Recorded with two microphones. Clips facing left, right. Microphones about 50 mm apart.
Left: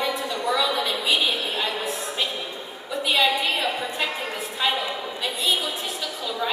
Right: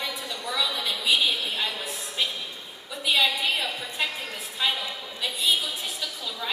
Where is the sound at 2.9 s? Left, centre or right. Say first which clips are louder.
Left 3 dB; centre.